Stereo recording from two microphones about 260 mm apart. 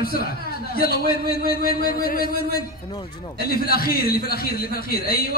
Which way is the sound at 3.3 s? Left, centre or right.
Left.